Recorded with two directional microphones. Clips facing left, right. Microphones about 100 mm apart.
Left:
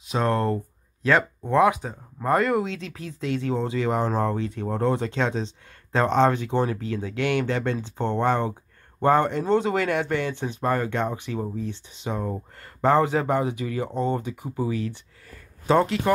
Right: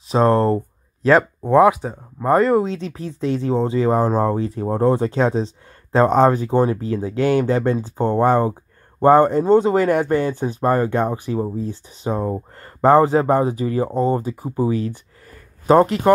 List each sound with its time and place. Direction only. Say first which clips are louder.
0.1 s speech: right 8 dB; 35° right (ahead or behind)